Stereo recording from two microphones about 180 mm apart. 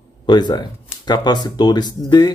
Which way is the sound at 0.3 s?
20° left (ahead or behind).